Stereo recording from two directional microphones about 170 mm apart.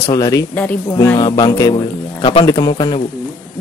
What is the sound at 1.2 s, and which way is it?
Music, 30° left (ahead or behind).